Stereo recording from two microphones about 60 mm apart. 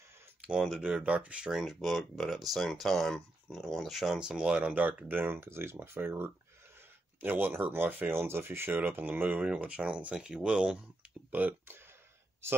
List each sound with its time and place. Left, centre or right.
0.4 s a sound: centre
1.0 s speech: right
1.5 s speech: centre
4.2 s speech: centre
11.3 s speech: right